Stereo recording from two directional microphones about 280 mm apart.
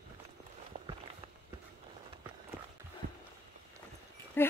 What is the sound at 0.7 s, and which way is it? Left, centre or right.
Walk, right.